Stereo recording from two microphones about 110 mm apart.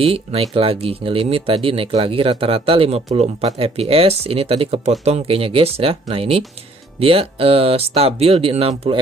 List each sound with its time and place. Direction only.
0.0 s speech: 65° right (ahead or behind)